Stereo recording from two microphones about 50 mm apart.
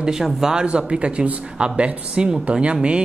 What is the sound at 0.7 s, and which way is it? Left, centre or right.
Speech, right.